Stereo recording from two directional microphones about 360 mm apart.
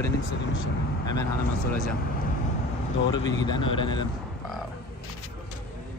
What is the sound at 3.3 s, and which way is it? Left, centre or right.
Speech, centre.